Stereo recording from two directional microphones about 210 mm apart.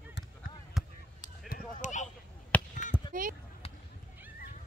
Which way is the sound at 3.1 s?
40° right (ahead or behind).